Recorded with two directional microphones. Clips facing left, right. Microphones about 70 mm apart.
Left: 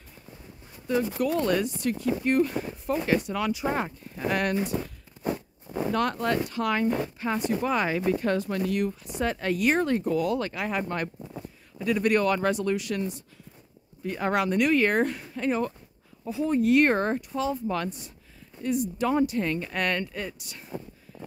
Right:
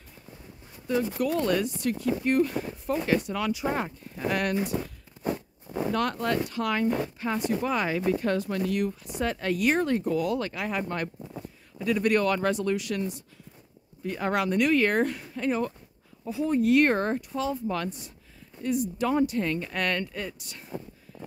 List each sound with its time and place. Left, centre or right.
1.2 s speech: left
4.6 s speech: centre
5.2 s zipper: centre
5.9 s speech: left
11.8 s speech: centre
12.7 s speech: left
21.1 s a sound: centre